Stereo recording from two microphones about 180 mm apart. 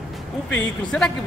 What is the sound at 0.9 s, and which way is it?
Speech, 5° left (ahead or behind).